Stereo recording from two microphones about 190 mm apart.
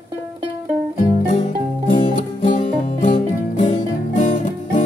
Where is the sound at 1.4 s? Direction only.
25° left (ahead or behind).